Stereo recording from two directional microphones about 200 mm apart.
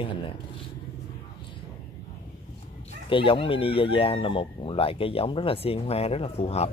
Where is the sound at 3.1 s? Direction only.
25° left (ahead or behind).